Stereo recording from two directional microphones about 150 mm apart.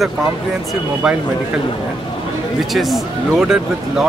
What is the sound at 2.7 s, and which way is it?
Speech, centre (ahead or behind).